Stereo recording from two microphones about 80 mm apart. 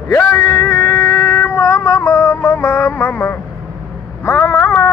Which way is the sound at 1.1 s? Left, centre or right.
Left.